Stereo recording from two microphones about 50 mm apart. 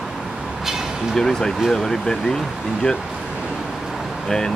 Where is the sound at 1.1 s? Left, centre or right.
Centre.